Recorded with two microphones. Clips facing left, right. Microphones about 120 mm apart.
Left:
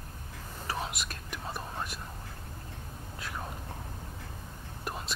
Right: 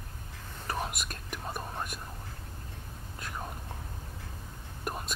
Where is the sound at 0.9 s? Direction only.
50° right (ahead or behind).